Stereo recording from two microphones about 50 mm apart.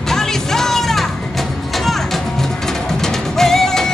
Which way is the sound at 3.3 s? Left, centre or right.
Centre.